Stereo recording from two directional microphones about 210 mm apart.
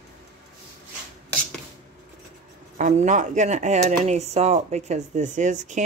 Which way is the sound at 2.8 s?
35° right (ahead or behind).